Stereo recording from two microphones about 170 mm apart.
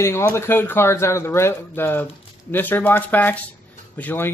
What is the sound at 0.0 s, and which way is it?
Speech, 15° left (ahead or behind).